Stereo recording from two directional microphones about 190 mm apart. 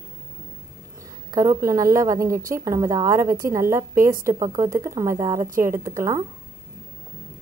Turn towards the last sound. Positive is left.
turn(degrees=-15)  # may be behind; listen again after turning